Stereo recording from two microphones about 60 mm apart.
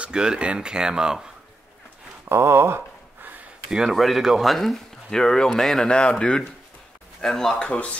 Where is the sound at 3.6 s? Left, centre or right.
Centre.